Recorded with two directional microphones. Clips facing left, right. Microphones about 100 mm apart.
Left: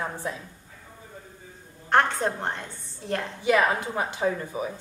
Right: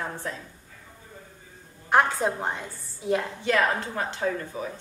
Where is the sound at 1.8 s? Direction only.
5° right (ahead or behind).